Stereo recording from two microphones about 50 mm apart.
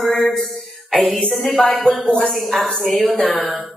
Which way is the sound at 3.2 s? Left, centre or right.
Centre.